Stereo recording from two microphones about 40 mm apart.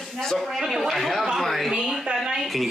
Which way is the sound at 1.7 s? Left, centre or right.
Centre.